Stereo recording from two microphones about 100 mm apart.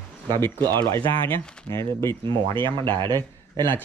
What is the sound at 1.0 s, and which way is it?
Speech, 60° right (ahead or behind).